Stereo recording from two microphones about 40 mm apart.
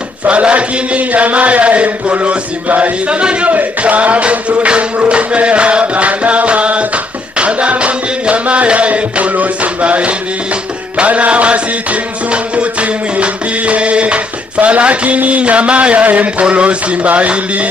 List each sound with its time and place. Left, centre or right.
0.3 s chant: right
7.3 s music: right
13.2 s speech: right